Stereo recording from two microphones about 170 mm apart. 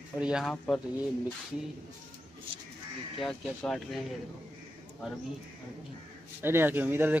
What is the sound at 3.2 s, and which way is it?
Speech, 5° left (ahead or behind).